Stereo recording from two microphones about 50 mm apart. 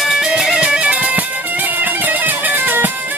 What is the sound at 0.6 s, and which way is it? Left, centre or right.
Music, right.